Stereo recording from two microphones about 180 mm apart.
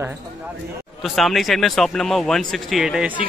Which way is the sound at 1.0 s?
Centre (ahead or behind).